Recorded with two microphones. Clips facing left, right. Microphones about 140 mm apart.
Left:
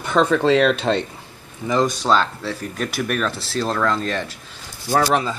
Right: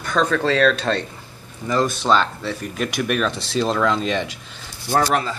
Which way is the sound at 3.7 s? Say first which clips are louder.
Even; 5° right (ahead or behind).